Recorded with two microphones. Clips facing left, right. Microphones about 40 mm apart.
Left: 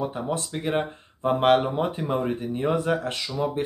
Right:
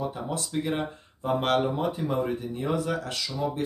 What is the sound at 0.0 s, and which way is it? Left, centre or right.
Speech, left.